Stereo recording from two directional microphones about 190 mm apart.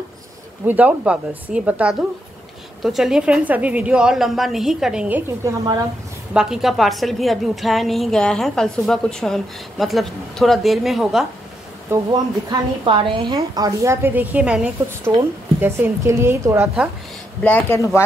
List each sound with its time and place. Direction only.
0.7 s a woman's voice: 10° right (ahead or behind)
12.1 s a woman's voice: 25° right (ahead or behind)
17.4 s speech: 10° left (ahead or behind)